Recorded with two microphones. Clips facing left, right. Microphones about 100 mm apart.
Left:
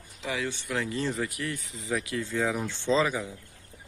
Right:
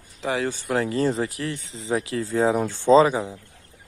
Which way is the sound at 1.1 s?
30° right (ahead or behind).